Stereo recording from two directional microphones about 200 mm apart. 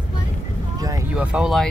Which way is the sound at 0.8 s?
15° right (ahead or behind).